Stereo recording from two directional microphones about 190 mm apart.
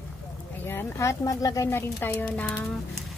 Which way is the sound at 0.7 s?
15° left (ahead or behind).